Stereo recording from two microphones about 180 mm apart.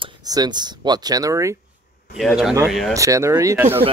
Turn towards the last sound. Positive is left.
turn(degrees=-15)  # may be behind; listen again after turning